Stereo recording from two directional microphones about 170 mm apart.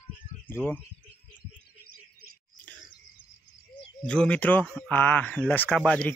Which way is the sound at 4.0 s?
5° left (ahead or behind).